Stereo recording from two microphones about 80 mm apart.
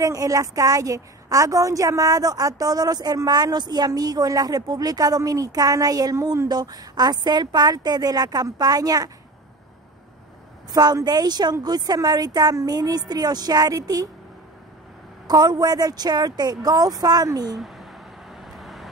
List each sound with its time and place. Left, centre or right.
0.0 s a woman's voice: right
10.7 s a woman's voice: right
15.2 s a woman's voice: right
17.6 s a sound: centre
18.3 s vehicle: centre